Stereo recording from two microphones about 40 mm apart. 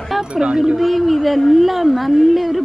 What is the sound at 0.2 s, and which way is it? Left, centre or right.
Speech, right.